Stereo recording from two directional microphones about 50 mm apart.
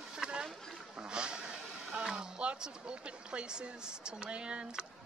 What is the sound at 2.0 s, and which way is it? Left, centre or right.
Speech, centre.